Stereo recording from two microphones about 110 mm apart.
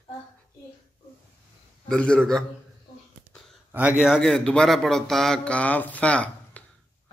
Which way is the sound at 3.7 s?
15° right (ahead or behind).